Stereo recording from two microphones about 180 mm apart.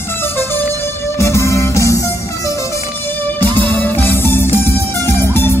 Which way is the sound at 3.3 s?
10° left (ahead or behind).